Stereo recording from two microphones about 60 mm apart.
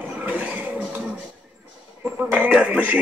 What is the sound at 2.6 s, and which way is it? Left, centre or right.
Speech, right.